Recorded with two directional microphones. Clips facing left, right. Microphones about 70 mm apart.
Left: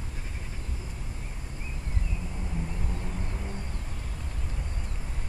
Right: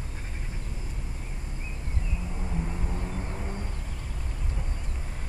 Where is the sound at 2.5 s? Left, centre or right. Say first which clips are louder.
Right 2 dB; centre.